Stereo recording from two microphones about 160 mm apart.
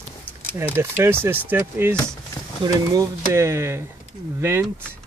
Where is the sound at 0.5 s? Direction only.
15° right (ahead or behind).